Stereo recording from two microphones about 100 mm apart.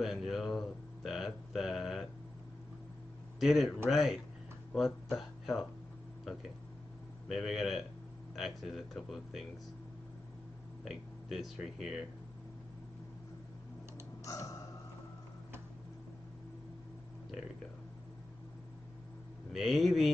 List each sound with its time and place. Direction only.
0.0 s speech: centre (ahead or behind)
3.3 s a man's voice: centre (ahead or behind)
7.2 s speech: centre (ahead or behind)
10.8 s speech: 5° right (ahead or behind)
14.2 s tick-tock: 35° left (ahead or behind)
19.5 s speech: centre (ahead or behind)